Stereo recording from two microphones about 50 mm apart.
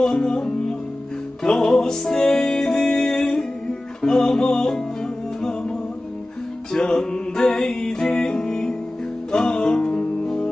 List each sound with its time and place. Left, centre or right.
0.0 s music: centre